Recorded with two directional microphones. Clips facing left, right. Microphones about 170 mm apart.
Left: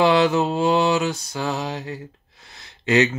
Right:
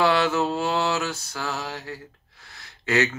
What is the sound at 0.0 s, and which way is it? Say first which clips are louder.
Mantra: left 4 dB; 20° left (ahead or behind).